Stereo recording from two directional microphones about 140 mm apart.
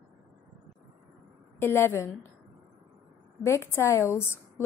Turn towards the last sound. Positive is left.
turn(degrees=20)  # may be behind; listen again after turning